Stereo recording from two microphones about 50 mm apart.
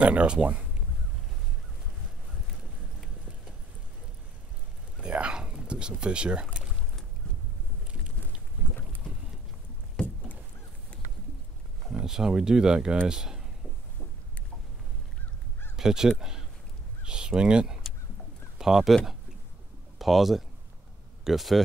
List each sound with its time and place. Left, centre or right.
0.0 s speech: right
5.0 s pour: right
11.9 s speech: centre
15.7 s speech: centre
20.0 s speech: centre